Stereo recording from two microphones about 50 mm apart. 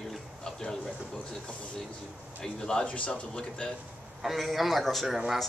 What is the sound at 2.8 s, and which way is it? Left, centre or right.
Speech, left.